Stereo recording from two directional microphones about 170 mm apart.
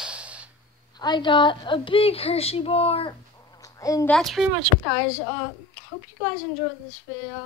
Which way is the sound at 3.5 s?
20° left (ahead or behind).